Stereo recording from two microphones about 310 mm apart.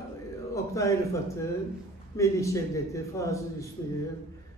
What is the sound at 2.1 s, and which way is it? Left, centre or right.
A man's voice, centre.